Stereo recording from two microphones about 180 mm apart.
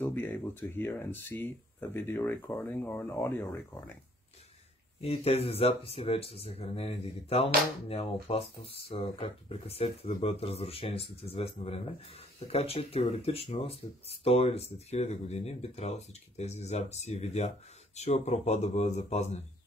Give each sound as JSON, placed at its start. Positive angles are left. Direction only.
{"t": 0.0, "sound": "speech", "side_deg": 10}
{"t": 5.0, "sound": "speech", "side_deg": 35}